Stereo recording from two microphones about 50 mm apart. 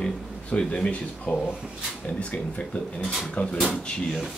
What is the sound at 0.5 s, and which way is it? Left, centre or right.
Speech, left.